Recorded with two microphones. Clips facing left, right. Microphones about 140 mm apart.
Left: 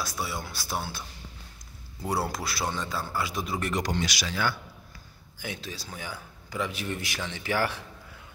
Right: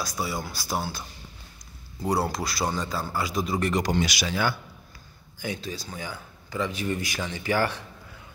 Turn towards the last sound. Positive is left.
turn(degrees=5)  # may be behind; listen again after turning